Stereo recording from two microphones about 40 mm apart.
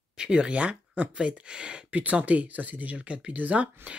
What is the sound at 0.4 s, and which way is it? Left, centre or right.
Speech, right.